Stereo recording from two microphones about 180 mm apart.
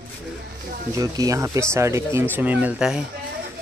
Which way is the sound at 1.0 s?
20° right (ahead or behind).